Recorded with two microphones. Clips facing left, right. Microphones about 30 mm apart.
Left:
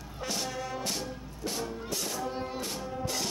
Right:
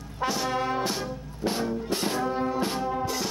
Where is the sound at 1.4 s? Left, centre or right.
Right.